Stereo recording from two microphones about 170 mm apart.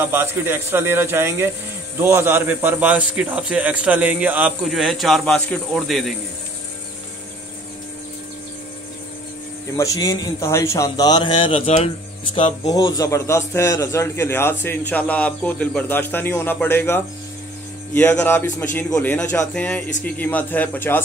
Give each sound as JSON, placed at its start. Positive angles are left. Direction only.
{"t": 0.0, "sound": "a man's voice", "side_deg": -15}
{"t": 9.8, "sound": "a man's voice", "side_deg": 20}
{"t": 12.6, "sound": "a man's voice", "side_deg": 20}